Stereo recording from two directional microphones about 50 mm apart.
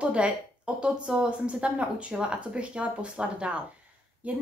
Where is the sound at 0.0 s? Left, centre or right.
Right.